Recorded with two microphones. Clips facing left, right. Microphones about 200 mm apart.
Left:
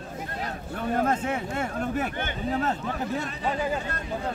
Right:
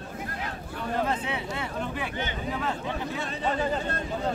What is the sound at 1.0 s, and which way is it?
Speech, 45° left (ahead or behind).